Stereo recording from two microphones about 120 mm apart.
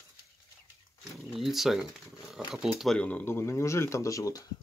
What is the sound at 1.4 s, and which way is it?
Speech, centre (ahead or behind).